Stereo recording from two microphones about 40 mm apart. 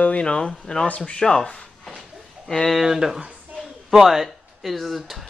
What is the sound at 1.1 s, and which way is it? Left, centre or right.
Speech, centre.